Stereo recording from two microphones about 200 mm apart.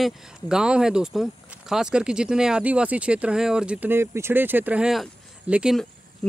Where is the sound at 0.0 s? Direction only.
5° right (ahead or behind).